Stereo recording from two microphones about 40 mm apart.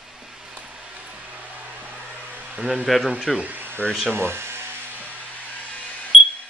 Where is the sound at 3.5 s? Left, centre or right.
Right.